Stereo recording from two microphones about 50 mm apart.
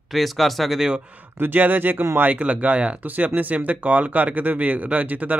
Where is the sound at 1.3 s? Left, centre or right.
Right.